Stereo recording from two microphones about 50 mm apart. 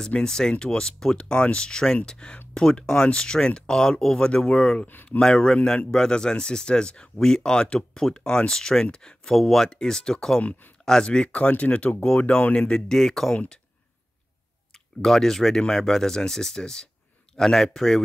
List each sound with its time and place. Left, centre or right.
0.2 s speech: centre
4.8 s speech: left
5.2 s speech: centre
15.0 s speech: centre